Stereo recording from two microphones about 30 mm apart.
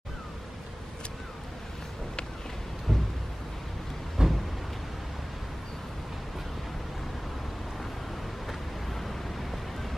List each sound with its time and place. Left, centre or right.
2.9 s a sound: centre
4.2 s vehicle: right
9.0 s vehicle: centre